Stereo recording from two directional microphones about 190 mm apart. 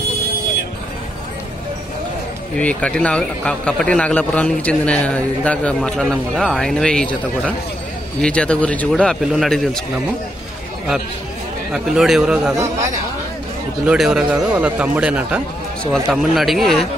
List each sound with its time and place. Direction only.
2.5 s a man's voice: 5° left (ahead or behind)
11.7 s a man's voice: centre (ahead or behind)
13.8 s a man's voice: 5° right (ahead or behind)